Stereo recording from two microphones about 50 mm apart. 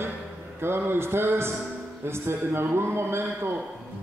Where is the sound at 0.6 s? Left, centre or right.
Right.